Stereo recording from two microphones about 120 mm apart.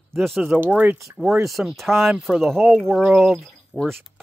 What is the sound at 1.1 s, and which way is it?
Speech, centre (ahead or behind).